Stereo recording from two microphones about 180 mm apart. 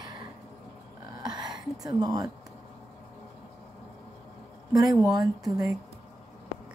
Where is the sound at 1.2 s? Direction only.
25° right (ahead or behind).